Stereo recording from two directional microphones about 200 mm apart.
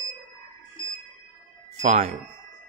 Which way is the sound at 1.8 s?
35° right (ahead or behind).